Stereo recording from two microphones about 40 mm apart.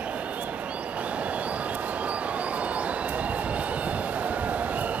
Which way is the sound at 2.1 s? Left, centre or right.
Right.